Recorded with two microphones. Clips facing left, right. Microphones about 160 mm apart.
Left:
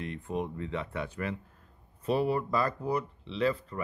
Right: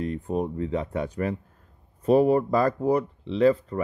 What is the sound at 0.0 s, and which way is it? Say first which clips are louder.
Speech: right 7 dB; 40° right (ahead or behind).